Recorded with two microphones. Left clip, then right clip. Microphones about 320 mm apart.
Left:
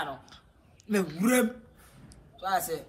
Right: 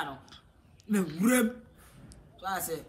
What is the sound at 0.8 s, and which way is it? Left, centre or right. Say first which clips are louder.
Speech: left 2 dB; centre.